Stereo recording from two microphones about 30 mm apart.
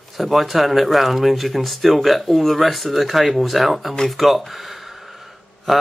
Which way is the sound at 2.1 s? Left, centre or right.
Centre.